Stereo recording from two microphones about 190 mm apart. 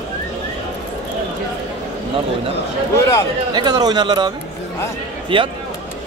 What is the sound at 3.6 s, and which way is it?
Speech, 20° right (ahead or behind).